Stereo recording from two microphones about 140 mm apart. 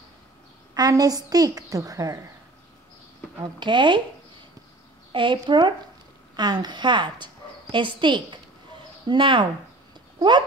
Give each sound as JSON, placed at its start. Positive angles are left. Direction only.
{"t": 0.7, "sound": "a woman's voice", "side_deg": -25}
{"t": 3.5, "sound": "a woman's voice", "side_deg": -35}
{"t": 5.1, "sound": "a woman's voice", "side_deg": -35}